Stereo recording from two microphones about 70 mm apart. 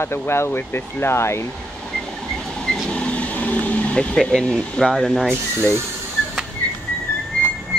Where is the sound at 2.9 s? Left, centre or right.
Centre.